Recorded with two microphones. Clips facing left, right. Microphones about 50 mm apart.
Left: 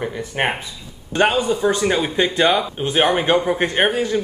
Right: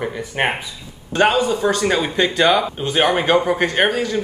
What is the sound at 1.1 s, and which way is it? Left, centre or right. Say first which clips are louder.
Speech: right 1 dB; left.